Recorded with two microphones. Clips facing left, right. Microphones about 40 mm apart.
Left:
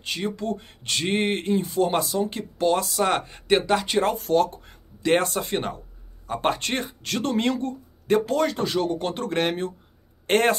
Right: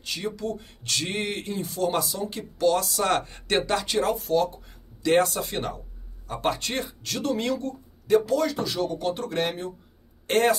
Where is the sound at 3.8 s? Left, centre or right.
Left.